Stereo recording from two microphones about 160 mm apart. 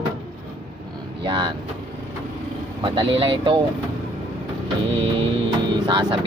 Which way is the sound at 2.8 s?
35° right (ahead or behind).